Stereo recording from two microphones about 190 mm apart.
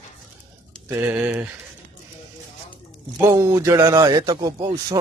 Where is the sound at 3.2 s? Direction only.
15° right (ahead or behind).